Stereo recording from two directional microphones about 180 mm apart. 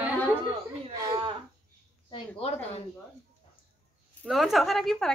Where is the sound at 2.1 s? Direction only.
35° left (ahead or behind).